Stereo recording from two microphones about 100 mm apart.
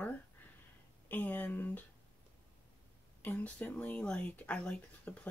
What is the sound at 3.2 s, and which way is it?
Speech, 15° left (ahead or behind).